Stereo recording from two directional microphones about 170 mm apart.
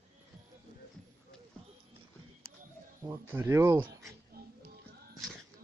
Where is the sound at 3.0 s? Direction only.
15° right (ahead or behind).